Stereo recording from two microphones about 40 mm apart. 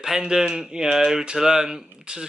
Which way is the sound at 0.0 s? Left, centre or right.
Centre.